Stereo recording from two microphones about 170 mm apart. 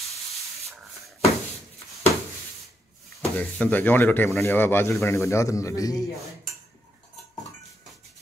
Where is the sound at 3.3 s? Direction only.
5° left (ahead or behind); by 6.1 s 20° left (ahead or behind).